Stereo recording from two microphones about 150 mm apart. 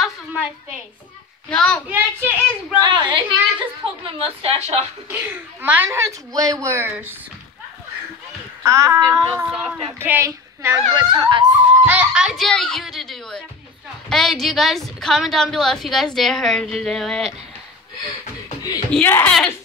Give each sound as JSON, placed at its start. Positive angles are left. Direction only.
{"t": 0.0, "sound": "a sound", "side_deg": -10}
{"t": 1.5, "sound": "a woman's voice", "side_deg": 5}
{"t": 1.9, "sound": "speech", "side_deg": -15}
{"t": 2.8, "sound": "a woman's voice", "side_deg": -30}
{"t": 5.0, "sound": "speech", "side_deg": -15}
{"t": 8.6, "sound": "a child's voice", "side_deg": -20}
{"t": 9.3, "sound": "speech", "side_deg": -10}
{"t": 11.0, "sound": "a woman's voice", "side_deg": -30}
{"t": 11.8, "sound": "a woman's voice", "side_deg": -10}
{"t": 18.9, "sound": "speech", "side_deg": 10}